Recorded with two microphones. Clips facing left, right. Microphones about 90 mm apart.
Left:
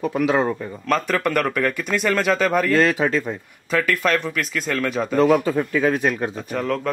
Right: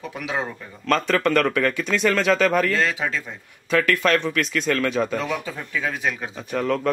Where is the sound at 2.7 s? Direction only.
50° left (ahead or behind).